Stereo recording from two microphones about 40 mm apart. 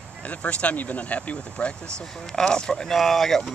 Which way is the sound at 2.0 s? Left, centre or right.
Centre.